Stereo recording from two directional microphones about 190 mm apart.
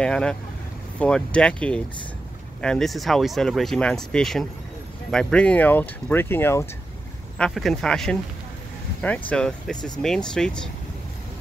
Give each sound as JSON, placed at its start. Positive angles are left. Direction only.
{"t": 0.0, "sound": "speech", "side_deg": 5}
{"t": 9.3, "sound": "speech", "side_deg": 5}